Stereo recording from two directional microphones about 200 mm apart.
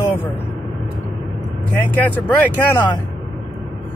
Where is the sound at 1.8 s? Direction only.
10° left (ahead or behind).